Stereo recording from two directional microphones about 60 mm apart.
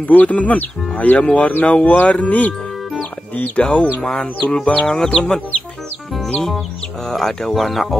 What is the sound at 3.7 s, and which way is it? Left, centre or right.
Speech, centre.